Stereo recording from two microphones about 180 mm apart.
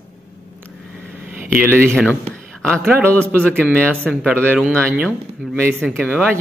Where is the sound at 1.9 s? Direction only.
5° left (ahead or behind).